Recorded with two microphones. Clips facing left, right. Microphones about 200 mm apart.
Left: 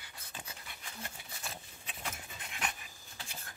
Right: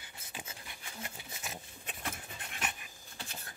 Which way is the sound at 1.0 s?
15° right (ahead or behind).